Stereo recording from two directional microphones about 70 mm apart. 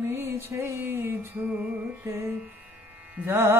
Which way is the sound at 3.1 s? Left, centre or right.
Right.